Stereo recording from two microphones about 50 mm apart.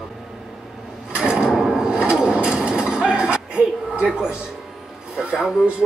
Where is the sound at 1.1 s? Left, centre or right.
Centre.